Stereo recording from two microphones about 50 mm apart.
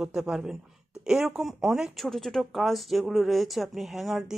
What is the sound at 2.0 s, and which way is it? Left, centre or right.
Speech, centre.